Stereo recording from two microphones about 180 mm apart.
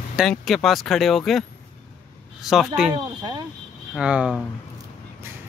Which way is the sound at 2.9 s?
25° right (ahead or behind).